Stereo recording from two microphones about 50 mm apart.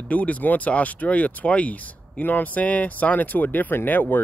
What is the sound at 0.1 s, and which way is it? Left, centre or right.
Speech, left.